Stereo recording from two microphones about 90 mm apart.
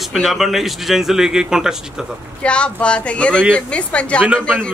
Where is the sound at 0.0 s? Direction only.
Centre (ahead or behind).